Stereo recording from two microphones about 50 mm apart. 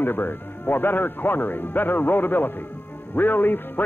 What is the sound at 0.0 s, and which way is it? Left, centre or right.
A man's voice, left.